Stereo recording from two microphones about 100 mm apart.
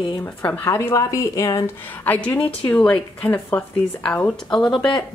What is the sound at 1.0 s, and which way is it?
Speech, 35° left (ahead or behind).